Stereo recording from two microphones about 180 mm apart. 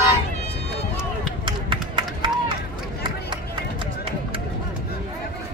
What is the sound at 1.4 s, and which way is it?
Run, 25° right (ahead or behind).